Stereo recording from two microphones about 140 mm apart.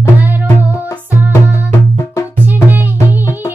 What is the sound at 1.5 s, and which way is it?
Music, 20° left (ahead or behind).